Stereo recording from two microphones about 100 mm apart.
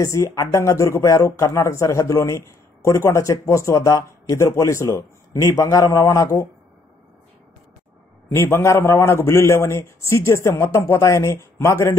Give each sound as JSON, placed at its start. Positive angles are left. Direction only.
{"t": 0.0, "sound": "speech", "side_deg": 30}
{"t": 8.3, "sound": "a man's voice", "side_deg": 25}